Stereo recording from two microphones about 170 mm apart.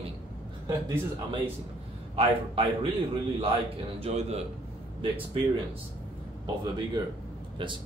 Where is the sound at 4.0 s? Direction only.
35° right (ahead or behind).